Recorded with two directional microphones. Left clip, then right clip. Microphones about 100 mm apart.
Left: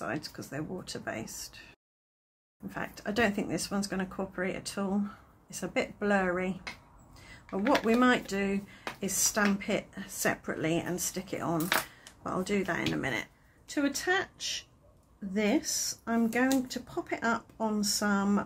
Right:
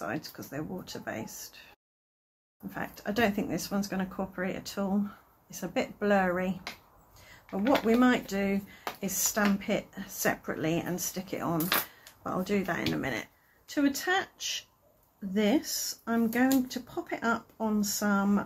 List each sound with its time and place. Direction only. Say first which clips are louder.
0.0 s speech: even; 30° left (ahead or behind)
2.7 s speech: even; 25° left (ahead or behind)
5.9 s speech: right 3 dB; 15° left (ahead or behind)
7.2 s speech: even; 35° left (ahead or behind)
13.7 s speech: right 1 dB; 10° left (ahead or behind)
15.3 s speech: right 1 dB; 15° left (ahead or behind)